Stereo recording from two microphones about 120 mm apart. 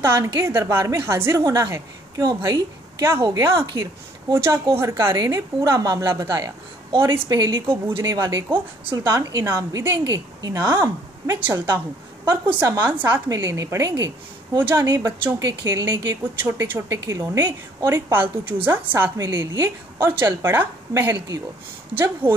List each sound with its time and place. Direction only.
0.0 s a woman's voice: 20° right (ahead or behind)
7.1 s a woman's voice: 35° right (ahead or behind); by 11.6 s 20° right (ahead or behind)
13.3 s a woman's voice: 25° right (ahead or behind)